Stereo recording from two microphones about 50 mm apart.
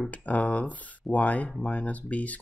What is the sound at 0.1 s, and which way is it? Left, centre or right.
Speech, left.